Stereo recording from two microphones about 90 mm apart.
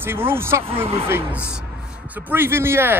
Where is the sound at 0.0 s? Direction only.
25° right (ahead or behind).